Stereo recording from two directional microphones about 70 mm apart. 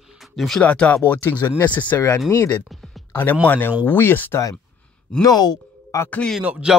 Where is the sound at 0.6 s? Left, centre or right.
Centre.